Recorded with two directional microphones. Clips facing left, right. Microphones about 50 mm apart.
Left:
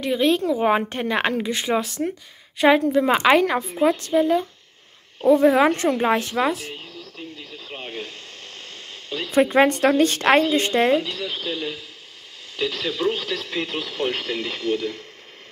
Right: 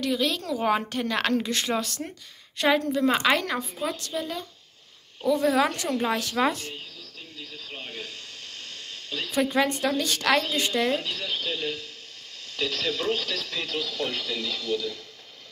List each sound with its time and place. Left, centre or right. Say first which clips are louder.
0.0 s a woman's voice: left 7 dB; left
3.7 s a woman's voice: left 11 dB; left
6.4 s speech: left 2 dB; centre
7.0 s radio: left 6 dB; left
9.3 s speech: left 7 dB; left
10.9 s speech: left 6 dB; centre; by 15.0 s left